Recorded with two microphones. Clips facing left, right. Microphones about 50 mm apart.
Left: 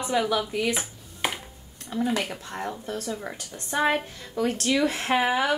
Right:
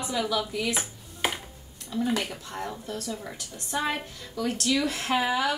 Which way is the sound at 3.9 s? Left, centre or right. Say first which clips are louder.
Left 6 dB; left.